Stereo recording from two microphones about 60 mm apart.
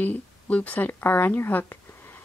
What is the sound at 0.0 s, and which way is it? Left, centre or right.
Speech, left.